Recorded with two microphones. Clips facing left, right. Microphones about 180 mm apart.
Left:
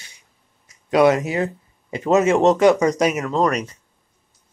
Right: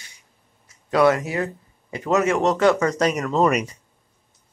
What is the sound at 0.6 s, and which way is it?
Speech, 20° left (ahead or behind).